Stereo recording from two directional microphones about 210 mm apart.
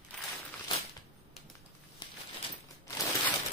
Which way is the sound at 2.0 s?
20° left (ahead or behind).